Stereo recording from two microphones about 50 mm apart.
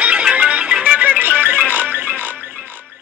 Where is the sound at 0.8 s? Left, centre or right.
Right.